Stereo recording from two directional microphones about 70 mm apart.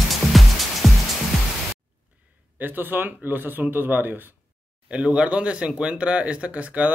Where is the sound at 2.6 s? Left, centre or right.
Right.